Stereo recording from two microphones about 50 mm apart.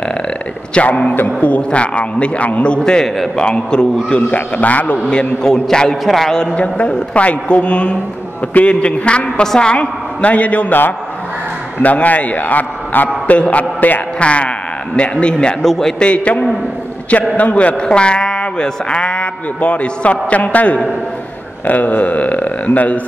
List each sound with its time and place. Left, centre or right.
0.7 s speech: left
4.3 s a man's voice: left
5.4 s a man's voice: centre
6.5 s speech: left
11.8 s a man's voice: left
14.2 s speech: left
15.6 s a man's voice: centre
16.0 s a man's voice: left
17.7 s speech: centre